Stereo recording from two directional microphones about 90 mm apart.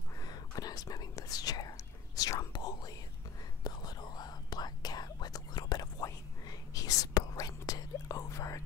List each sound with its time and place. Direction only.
0.2 s whispering: 45° left (ahead or behind)